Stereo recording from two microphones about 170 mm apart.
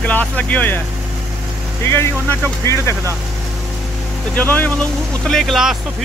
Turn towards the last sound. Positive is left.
turn(degrees=0)  # may be behind; listen again after turning